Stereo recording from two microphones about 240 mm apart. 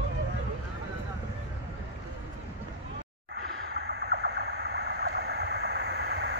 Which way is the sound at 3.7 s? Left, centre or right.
Right.